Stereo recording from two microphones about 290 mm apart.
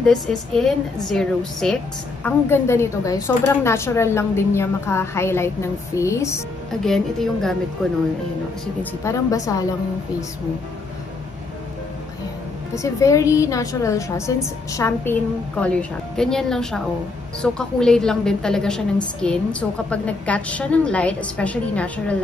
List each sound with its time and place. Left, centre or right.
0.0 s a woman's voice: centre
9.0 s a woman's voice: centre
12.7 s a woman's voice: centre